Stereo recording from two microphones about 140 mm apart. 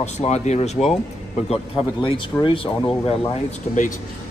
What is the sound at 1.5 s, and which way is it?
A man's voice, 35° left (ahead or behind).